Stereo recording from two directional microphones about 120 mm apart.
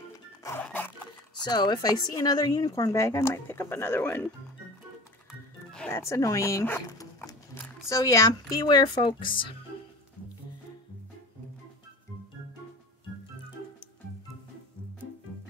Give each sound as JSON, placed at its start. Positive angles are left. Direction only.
{"t": 0.6, "sound": "music", "side_deg": 15}
{"t": 1.3, "sound": "speech", "side_deg": 35}
{"t": 5.9, "sound": "speech", "side_deg": 20}
{"t": 7.9, "sound": "speech", "side_deg": 25}